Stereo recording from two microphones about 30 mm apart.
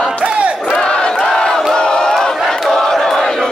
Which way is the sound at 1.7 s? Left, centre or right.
Left.